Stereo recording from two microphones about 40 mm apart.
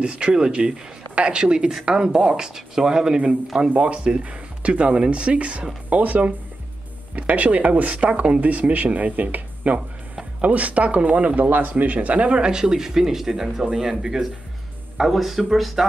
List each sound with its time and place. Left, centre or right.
0.0 s speech: right
3.7 s speech: right
11.3 s speech: right
11.7 s speech: right; by 15.9 s centre